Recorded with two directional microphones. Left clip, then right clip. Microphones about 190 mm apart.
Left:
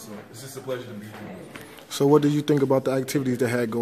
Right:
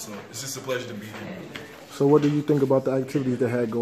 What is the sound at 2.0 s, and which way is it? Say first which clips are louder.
Speech: even; 15° left (ahead or behind).